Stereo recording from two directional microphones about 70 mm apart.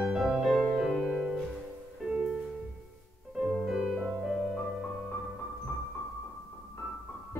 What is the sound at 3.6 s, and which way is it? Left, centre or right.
Music, centre.